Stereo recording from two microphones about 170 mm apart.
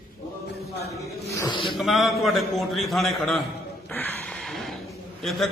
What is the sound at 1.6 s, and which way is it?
A man's voice, centre (ahead or behind).